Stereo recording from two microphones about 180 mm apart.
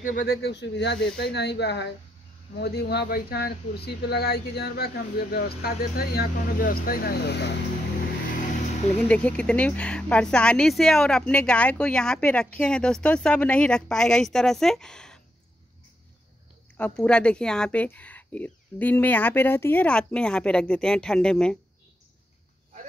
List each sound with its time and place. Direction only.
0.0 s speech: 60° left (ahead or behind)
9.0 s speech: 5° left (ahead or behind)
16.7 s speech: 5° left (ahead or behind)